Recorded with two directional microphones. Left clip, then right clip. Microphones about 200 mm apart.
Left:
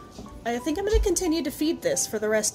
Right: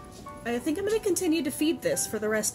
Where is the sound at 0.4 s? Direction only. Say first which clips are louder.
Left 2 dB; 15° right (ahead or behind).